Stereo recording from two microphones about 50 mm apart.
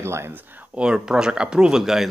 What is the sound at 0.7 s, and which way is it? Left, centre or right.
Speech, centre.